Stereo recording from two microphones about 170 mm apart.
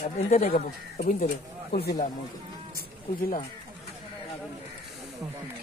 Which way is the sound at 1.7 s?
75° left (ahead or behind).